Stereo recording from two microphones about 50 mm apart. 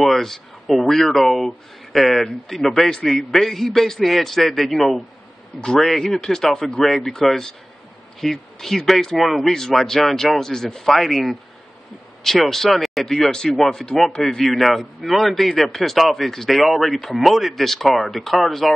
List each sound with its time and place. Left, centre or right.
0.0 s speech: centre